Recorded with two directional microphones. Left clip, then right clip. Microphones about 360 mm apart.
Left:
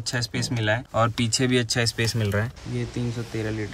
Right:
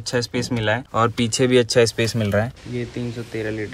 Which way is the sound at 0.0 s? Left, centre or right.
Centre.